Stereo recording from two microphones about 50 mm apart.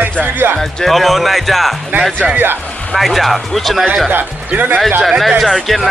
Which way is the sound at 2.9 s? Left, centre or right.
Centre.